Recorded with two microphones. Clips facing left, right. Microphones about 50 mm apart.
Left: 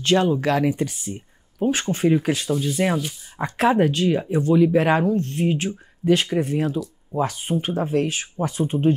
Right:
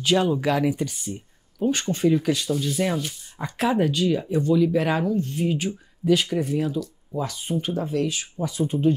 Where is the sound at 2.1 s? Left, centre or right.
Left.